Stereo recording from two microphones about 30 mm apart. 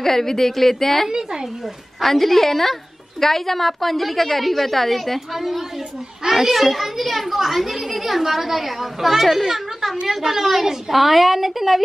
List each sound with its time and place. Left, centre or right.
0.0 s a woman's voice: centre
1.1 s speech: right
2.0 s a woman's voice: centre